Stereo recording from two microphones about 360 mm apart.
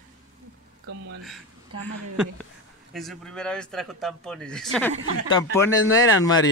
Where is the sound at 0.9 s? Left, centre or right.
Right.